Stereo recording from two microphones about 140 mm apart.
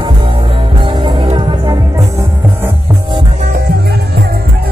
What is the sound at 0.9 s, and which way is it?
Music, 35° right (ahead or behind).